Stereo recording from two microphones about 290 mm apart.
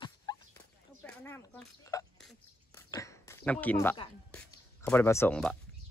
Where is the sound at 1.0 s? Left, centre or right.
Centre.